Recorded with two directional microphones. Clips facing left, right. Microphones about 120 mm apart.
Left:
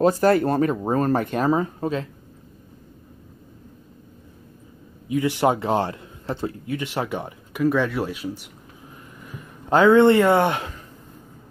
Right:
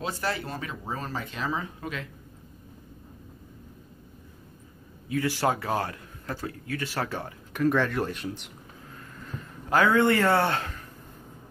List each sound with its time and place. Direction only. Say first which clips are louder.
0.0 s speech: left 14 dB; 45° left (ahead or behind)
5.0 s a man's voice: left 6 dB; 20° left (ahead or behind)
9.2 s a sound: even; 15° left (ahead or behind)
9.7 s a man's voice: left 7 dB; 25° left (ahead or behind)